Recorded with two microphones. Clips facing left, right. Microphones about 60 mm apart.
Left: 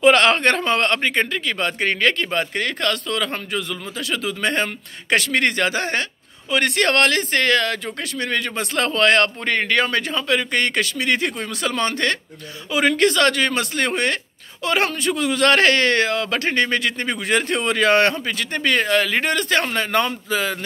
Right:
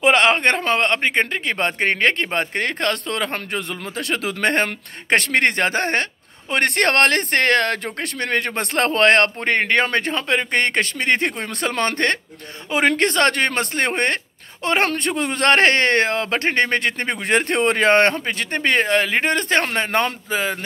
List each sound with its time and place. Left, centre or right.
0.0 s speech: right